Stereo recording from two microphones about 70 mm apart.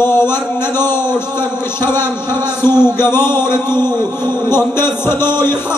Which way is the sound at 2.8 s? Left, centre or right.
Left.